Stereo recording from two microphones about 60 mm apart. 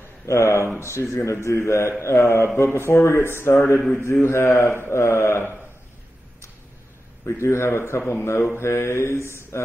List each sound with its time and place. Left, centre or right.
0.3 s a man's voice: left
7.2 s a man's voice: left